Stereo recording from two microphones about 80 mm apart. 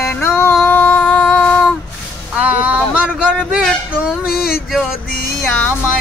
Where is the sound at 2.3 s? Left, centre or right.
Centre.